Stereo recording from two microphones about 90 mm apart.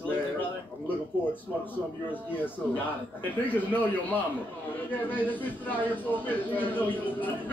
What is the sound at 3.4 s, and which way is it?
A man's voice, 20° left (ahead or behind).